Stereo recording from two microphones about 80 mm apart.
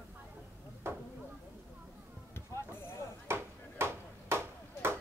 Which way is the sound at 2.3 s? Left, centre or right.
Left.